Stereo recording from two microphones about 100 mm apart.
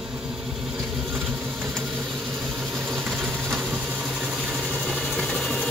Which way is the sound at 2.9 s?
Centre (ahead or behind).